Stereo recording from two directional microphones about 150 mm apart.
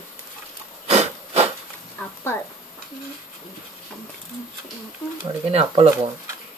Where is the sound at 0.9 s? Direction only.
45° right (ahead or behind).